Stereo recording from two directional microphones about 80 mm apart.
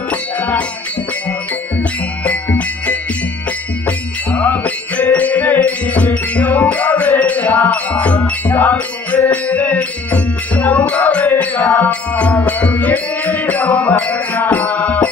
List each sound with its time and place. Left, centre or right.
0.1 s music: centre
1.8 s music: centre